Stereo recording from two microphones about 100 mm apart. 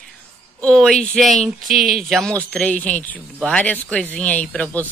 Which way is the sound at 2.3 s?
15° left (ahead or behind).